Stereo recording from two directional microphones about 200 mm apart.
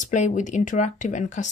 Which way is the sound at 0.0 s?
40° left (ahead or behind).